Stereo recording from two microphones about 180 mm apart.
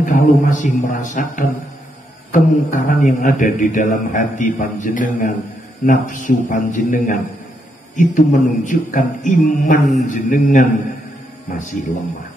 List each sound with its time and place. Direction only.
0.0 s a man's voice: 45° left (ahead or behind)